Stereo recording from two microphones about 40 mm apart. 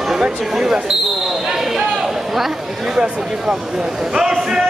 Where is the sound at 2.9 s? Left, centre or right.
Centre.